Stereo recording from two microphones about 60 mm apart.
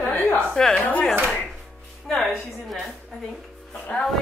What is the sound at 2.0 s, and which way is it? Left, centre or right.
Music, centre.